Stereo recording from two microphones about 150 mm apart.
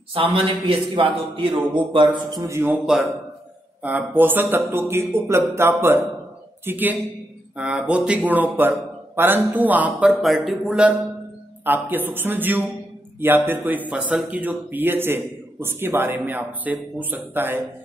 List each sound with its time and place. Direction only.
0.1 s a man's voice: 35° right (ahead or behind)
2.4 s speech: 15° right (ahead or behind)
3.8 s speech: 10° right (ahead or behind)